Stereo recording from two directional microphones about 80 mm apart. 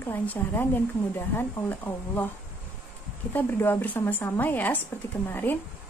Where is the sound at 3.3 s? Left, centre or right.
Left.